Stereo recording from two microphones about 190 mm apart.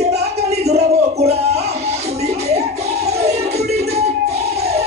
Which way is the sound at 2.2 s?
35° right (ahead or behind).